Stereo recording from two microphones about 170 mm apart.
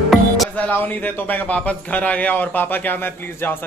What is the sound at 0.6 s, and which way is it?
A man's voice, 10° left (ahead or behind).